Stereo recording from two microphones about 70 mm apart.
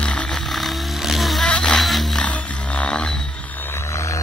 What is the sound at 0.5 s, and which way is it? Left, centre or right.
Music, centre.